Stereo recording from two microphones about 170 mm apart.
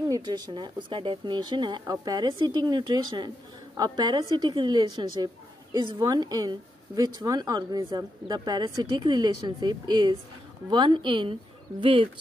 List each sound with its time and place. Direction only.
0.1 s a woman's voice: 25° right (ahead or behind)